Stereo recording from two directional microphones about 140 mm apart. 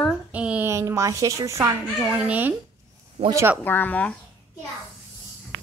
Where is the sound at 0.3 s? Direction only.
10° right (ahead or behind).